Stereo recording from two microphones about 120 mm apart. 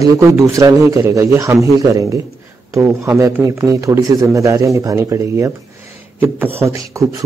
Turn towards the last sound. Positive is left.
turn(degrees=-25)  # may be behind; listen again after turning